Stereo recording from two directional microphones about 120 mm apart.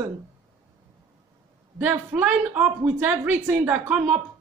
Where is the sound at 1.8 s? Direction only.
10° right (ahead or behind).